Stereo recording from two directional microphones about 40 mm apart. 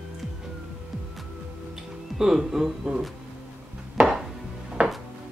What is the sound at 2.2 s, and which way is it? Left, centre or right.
Speech, centre.